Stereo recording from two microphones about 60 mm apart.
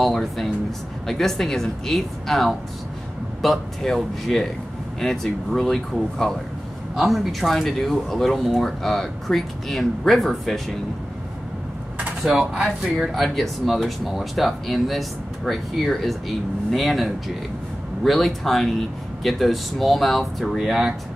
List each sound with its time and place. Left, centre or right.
0.0 s speech: centre
12.3 s speech: centre